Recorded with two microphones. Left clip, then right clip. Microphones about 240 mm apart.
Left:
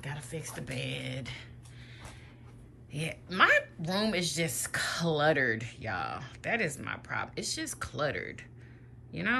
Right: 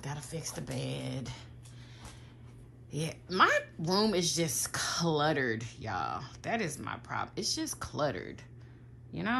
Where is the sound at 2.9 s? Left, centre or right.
Centre.